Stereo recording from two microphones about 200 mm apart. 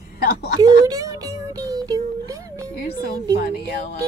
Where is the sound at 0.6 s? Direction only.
20° right (ahead or behind).